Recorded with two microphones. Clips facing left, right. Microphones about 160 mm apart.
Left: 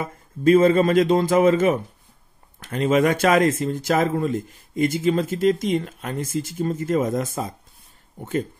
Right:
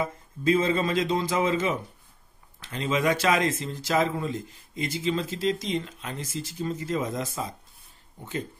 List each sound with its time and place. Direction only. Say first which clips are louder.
0.4 s speech: left 8 dB; 50° left (ahead or behind)